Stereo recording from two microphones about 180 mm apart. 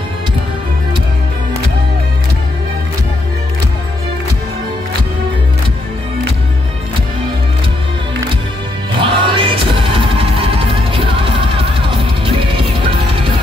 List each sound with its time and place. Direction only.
9.0 s music: 30° right (ahead or behind)